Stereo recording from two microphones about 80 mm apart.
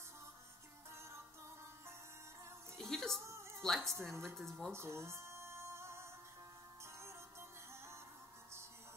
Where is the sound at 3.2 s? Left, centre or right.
Right.